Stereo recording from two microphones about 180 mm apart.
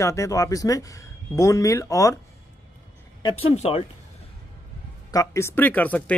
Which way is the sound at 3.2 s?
30° left (ahead or behind).